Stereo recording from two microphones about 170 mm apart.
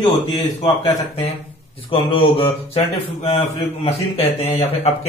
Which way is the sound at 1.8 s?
35° left (ahead or behind).